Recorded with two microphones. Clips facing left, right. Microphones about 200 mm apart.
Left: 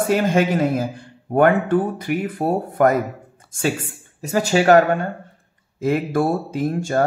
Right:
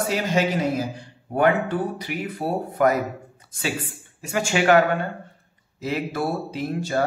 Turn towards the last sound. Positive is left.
turn(degrees=45)  # may be behind; listen again after turning